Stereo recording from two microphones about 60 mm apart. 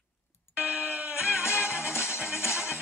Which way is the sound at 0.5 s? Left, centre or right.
Right.